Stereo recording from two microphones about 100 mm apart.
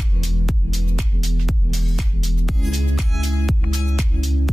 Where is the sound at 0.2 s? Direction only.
Centre (ahead or behind).